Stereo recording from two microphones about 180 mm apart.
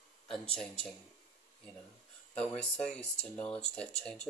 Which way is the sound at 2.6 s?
35° left (ahead or behind).